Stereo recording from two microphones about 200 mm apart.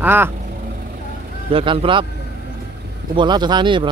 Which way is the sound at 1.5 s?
25° right (ahead or behind).